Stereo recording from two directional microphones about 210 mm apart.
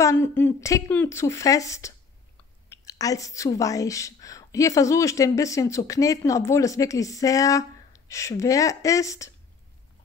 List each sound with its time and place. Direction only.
0.0 s a woman's voice: 10° left (ahead or behind)